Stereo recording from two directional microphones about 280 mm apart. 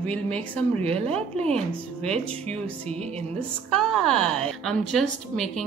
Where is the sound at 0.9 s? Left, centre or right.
Right.